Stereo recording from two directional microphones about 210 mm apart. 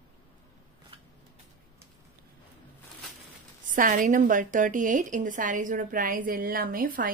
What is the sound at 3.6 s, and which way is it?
Speech, 40° right (ahead or behind).